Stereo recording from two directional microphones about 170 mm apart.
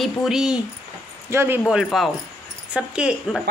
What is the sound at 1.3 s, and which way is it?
Speech, 15° right (ahead or behind).